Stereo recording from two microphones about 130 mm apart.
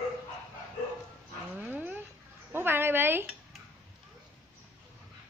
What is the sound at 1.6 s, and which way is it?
Dog, 15° right (ahead or behind).